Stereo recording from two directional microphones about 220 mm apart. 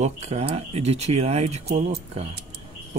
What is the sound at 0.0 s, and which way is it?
Speech, 30° right (ahead or behind).